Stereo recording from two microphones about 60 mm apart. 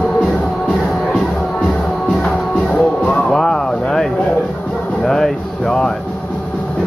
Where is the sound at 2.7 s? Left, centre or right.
Centre.